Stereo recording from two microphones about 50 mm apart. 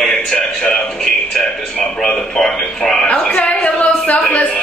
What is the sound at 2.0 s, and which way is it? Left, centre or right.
Speech, centre.